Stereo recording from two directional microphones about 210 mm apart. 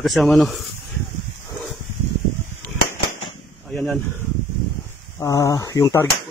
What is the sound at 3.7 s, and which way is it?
Speech, 5° left (ahead or behind).